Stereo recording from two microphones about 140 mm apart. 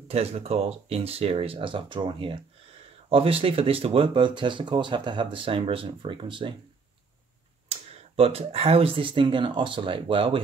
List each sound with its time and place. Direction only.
0.1 s speech: 45° right (ahead or behind)
7.7 s speech: 45° right (ahead or behind)